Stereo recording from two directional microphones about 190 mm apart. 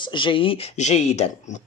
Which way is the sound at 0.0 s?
25° left (ahead or behind).